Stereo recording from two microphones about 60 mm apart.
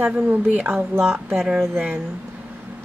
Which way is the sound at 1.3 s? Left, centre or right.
Centre.